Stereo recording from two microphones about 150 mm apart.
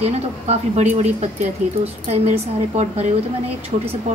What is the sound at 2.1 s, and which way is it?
A woman's voice, 50° right (ahead or behind).